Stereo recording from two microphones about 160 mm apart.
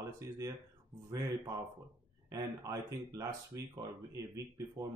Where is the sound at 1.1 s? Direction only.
25° right (ahead or behind).